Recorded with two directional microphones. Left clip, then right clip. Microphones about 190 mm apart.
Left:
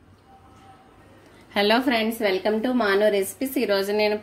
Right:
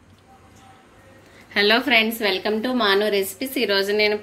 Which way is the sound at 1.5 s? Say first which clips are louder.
Right 4 dB; 25° left (ahead or behind).